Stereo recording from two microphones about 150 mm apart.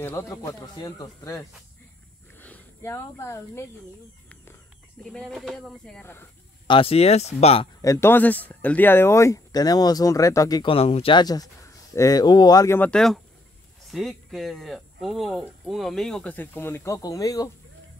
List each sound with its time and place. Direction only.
0.0 s speech: 20° left (ahead or behind)
5.0 s speech: 5° left (ahead or behind)
6.7 s speech: 40° left (ahead or behind)
7.8 s speech: 20° left (ahead or behind)
10.7 s speech: 40° left (ahead or behind); by 17.5 s 25° left (ahead or behind)